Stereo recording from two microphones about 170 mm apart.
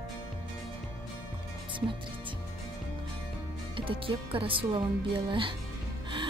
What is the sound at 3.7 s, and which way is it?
Speech, 30° right (ahead or behind).